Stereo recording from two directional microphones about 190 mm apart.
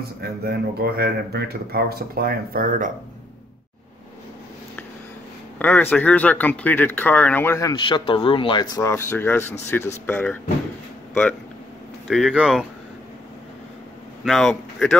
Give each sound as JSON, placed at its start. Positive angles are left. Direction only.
{"t": 0.2, "sound": "speech", "side_deg": -55}
{"t": 5.6, "sound": "speech", "side_deg": 10}
{"t": 12.1, "sound": "speech", "side_deg": 0}
{"t": 14.2, "sound": "speech", "side_deg": 0}